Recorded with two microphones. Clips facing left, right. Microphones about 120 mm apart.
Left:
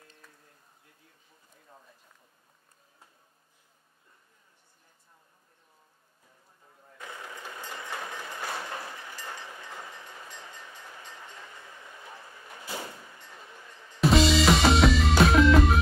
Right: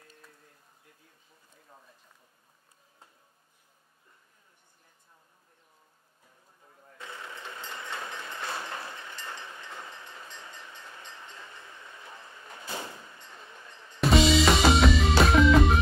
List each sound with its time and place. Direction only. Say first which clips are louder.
7.4 s train: left 1 dB; 25° right (ahead or behind)
14.0 s music: even; centre (ahead or behind)